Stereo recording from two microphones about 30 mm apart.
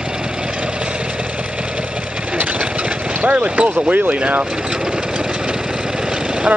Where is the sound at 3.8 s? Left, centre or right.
Right.